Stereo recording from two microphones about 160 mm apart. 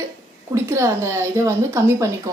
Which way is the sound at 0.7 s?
15° right (ahead or behind).